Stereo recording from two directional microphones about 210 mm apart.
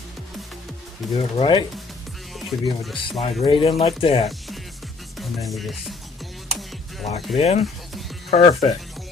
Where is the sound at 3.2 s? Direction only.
25° left (ahead or behind).